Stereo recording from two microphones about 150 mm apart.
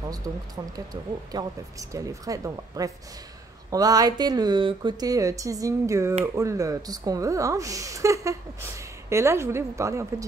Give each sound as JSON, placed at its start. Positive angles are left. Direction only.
{"t": 0.3, "sound": "speech", "side_deg": -25}